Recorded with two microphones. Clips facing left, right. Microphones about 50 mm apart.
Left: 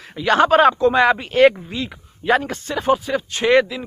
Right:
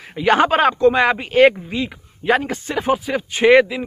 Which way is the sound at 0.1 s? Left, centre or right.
Right.